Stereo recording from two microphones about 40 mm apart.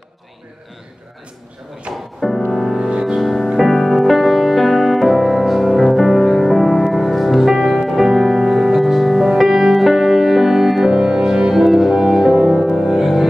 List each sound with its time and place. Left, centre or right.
1.9 s music: right
2.5 s music: centre
11.5 s music: centre